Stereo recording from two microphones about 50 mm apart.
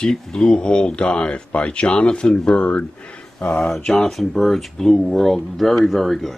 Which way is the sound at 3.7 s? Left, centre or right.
Centre.